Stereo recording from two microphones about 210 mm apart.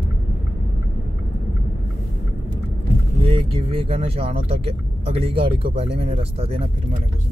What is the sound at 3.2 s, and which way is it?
Speech, 25° right (ahead or behind).